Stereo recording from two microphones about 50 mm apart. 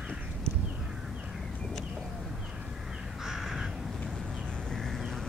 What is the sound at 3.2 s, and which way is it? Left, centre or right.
Crow, centre.